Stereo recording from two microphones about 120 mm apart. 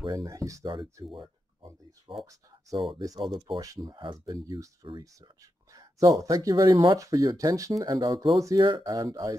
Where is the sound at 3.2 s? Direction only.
40° right (ahead or behind).